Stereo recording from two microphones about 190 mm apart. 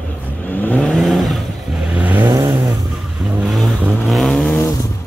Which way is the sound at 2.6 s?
Centre (ahead or behind).